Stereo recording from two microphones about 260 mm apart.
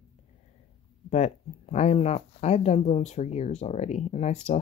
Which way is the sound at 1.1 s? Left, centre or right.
Left.